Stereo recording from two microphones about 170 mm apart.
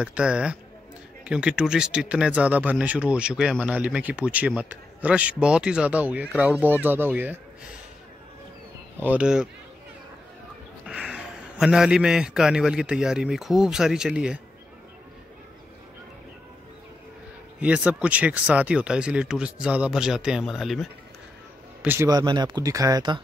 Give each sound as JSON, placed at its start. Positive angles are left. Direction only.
{"t": 0.0, "sound": "a man's voice", "side_deg": -5}
{"t": 9.0, "sound": "a man's voice", "side_deg": -5}
{"t": 10.9, "sound": "a man's voice", "side_deg": -5}
{"t": 17.6, "sound": "speech", "side_deg": -5}
{"t": 21.8, "sound": "speech", "side_deg": -15}